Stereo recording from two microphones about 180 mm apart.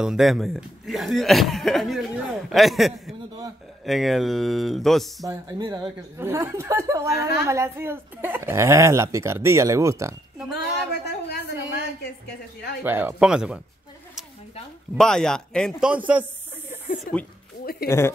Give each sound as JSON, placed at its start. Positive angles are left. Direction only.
{"t": 0.0, "sound": "speech", "side_deg": 0}
{"t": 5.2, "sound": "a woman's voice", "side_deg": -20}
{"t": 7.2, "sound": "a woman's voice", "side_deg": 60}
{"t": 7.4, "sound": "a woman's voice", "side_deg": -15}
{"t": 10.5, "sound": "a woman's voice", "side_deg": 65}
{"t": 12.8, "sound": "speech", "side_deg": -10}
{"t": 15.0, "sound": "speech", "side_deg": 5}
{"t": 15.9, "sound": "a woman's voice", "side_deg": -10}
{"t": 16.7, "sound": "a sound", "side_deg": 45}
{"t": 17.8, "sound": "speech", "side_deg": 15}